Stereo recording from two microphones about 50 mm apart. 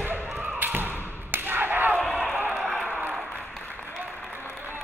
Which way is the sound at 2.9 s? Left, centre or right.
Right.